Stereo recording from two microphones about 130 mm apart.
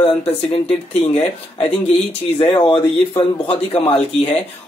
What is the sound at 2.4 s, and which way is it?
Speech, 40° left (ahead or behind).